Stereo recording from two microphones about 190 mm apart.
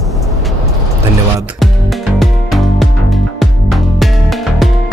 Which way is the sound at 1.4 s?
Centre (ahead or behind).